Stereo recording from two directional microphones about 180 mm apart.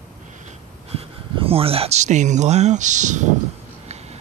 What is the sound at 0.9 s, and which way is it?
Speech, 30° right (ahead or behind).